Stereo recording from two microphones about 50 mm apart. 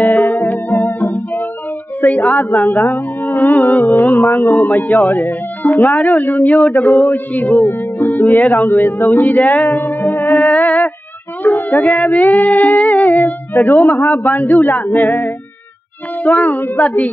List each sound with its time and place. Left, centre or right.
0.0 s music: left